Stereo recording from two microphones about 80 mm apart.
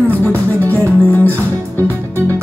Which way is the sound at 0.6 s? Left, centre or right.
Left.